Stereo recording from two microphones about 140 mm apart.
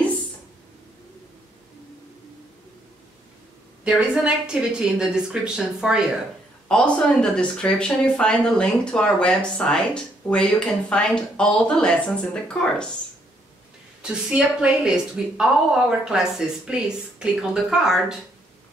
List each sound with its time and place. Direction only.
3.8 s a woman's voice: 5° right (ahead or behind)
6.7 s speech: 5° left (ahead or behind)
14.0 s a woman's voice: 10° right (ahead or behind)